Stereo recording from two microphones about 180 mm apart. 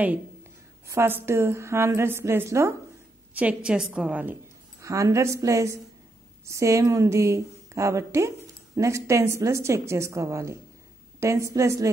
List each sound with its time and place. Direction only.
0.8 s a woman's voice: 15° right (ahead or behind)